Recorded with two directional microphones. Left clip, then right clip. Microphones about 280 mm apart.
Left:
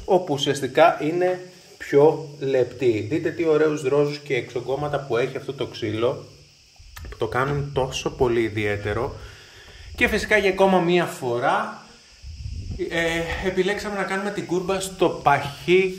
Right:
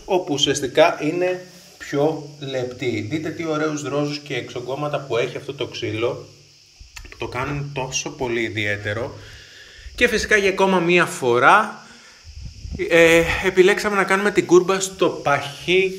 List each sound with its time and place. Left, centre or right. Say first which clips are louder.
0.1 s speech: right 1 dB; left
7.2 s speech: left 3 dB; left; by 11.6 s centre
12.7 s speech: right 10 dB; centre
14.7 s speech: right 2 dB; centre